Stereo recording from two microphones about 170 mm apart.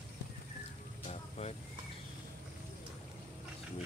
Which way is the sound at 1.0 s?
40° left (ahead or behind).